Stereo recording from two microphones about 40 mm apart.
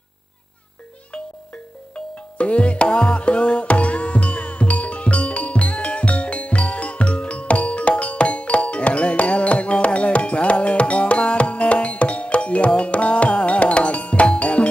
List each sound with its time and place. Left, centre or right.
2.0 s music: left